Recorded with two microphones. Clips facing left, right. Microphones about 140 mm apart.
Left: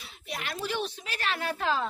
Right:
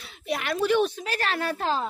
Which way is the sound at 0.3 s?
70° right (ahead or behind).